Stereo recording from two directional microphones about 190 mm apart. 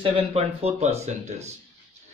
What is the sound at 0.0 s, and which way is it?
Speech, 30° right (ahead or behind).